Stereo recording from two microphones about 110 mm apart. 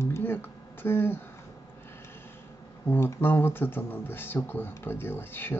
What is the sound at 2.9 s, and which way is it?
Speech, 20° left (ahead or behind).